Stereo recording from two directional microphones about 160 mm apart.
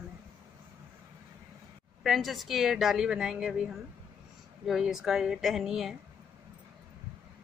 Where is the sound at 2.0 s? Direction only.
Centre (ahead or behind).